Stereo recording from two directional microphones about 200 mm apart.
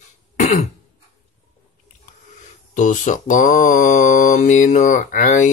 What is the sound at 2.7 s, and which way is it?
Speech, 40° left (ahead or behind).